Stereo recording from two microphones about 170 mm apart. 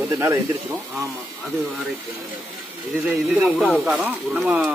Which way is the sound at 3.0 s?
5° right (ahead or behind).